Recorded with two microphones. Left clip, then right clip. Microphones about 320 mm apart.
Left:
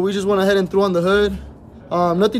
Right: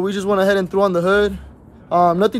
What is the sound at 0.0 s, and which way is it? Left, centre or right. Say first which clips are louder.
Speech: even; centre.